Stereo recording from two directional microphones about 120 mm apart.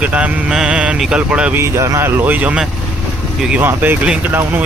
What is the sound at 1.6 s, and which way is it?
Speech, 25° right (ahead or behind).